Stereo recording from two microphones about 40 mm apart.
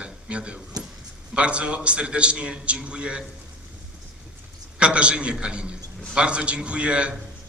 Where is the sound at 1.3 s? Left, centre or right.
Right.